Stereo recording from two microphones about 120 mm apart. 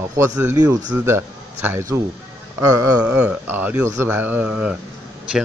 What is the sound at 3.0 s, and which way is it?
Speech, 10° right (ahead or behind).